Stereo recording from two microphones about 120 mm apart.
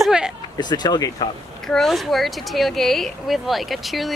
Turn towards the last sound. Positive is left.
turn(degrees=0)  # may be behind; listen again after turning